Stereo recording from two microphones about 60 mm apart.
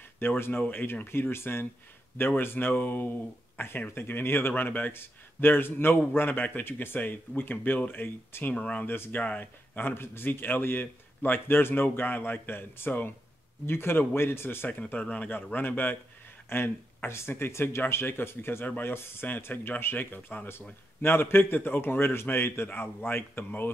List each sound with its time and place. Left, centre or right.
0.5 s a man's voice: left
8.5 s speech: left
8.8 s a man's voice: left
9.1 s a man's voice: left
14.7 s a man's voice: left